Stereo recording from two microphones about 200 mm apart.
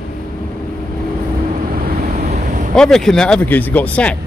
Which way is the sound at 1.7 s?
45° right (ahead or behind).